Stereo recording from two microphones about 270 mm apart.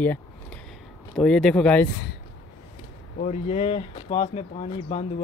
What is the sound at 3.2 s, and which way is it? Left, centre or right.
Speech, left.